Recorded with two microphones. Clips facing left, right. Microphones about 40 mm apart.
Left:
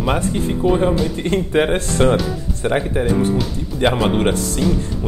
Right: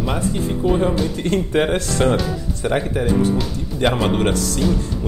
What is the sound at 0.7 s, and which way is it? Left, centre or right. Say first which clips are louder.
Speech: left 2 dB; centre.